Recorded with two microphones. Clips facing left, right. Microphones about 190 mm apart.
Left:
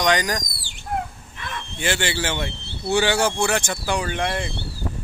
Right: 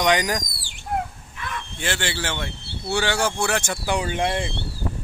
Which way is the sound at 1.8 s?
5° left (ahead or behind).